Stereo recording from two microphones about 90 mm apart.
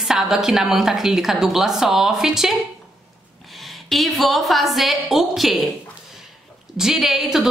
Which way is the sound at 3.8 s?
Centre (ahead or behind).